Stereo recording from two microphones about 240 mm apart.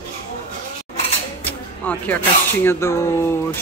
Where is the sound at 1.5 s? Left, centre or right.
Centre.